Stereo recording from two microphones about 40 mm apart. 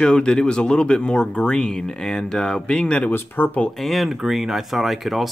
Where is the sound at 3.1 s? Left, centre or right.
Left.